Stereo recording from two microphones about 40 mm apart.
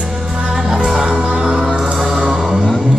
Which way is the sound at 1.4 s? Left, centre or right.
Right.